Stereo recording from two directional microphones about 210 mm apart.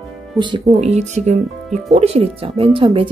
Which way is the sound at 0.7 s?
30° right (ahead or behind).